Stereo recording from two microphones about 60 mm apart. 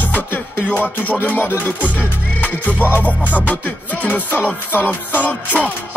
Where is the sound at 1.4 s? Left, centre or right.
Left.